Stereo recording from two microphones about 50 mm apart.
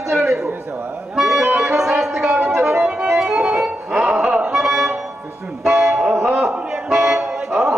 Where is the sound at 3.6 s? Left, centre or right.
Right.